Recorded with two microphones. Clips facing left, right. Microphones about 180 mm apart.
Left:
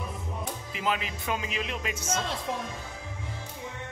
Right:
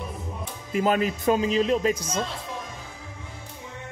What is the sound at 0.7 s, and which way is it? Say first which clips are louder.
A man's voice: right 9 dB; 45° right (ahead or behind).